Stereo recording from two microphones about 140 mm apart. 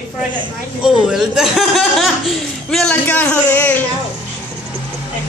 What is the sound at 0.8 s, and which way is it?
Speech, 5° right (ahead or behind).